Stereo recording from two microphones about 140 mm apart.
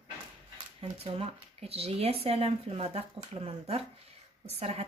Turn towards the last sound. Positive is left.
turn(degrees=-50)  # may be behind; listen again after turning